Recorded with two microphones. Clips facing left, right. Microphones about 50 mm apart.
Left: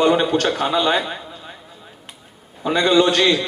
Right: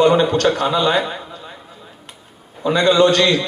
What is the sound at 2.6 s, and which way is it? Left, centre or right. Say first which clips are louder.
Speech: right 2 dB; centre.